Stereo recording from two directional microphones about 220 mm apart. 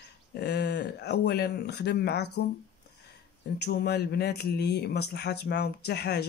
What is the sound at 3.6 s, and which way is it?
Speech, 50° left (ahead or behind).